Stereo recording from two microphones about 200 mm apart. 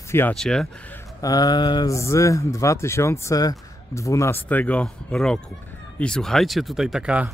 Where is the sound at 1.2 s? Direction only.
20° left (ahead or behind).